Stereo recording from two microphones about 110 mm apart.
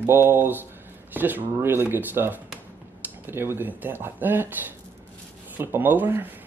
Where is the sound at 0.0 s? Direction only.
20° right (ahead or behind).